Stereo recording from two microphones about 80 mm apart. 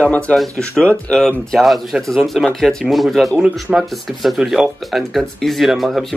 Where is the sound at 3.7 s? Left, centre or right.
Centre.